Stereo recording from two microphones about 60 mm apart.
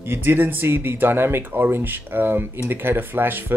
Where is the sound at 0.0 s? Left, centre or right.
Right.